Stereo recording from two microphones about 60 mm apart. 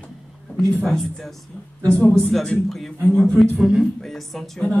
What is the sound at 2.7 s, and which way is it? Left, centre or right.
A man's voice, centre.